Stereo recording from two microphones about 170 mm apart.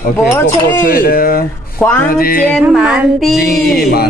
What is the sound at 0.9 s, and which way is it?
Speech, 60° left (ahead or behind).